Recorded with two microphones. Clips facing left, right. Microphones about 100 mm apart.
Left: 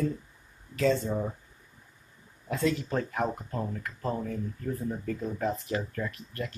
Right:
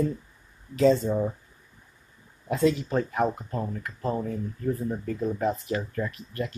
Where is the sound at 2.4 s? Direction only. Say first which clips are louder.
Right 5 dB; 20° right (ahead or behind).